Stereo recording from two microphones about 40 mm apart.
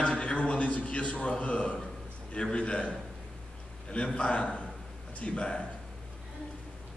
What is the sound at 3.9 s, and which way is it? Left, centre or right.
Speech, left.